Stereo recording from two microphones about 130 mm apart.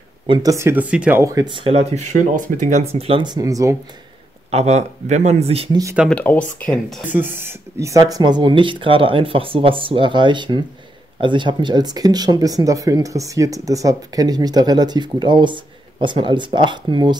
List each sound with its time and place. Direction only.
0.3 s speech: 25° right (ahead or behind); by 1.2 s 10° right (ahead or behind)
1.2 s speech: 30° right (ahead or behind); by 2.0 s 50° right (ahead or behind)
2.1 s speech: 75° right (ahead or behind); by 3.2 s 50° right (ahead or behind)
3.2 s speech: 30° right (ahead or behind)
4.5 s speech: 55° right (ahead or behind)
5.7 s speech: 25° right (ahead or behind)
6.0 s speech: 10° left (ahead or behind)
7.2 s speech: 20° right (ahead or behind); by 17.2 s 35° right (ahead or behind)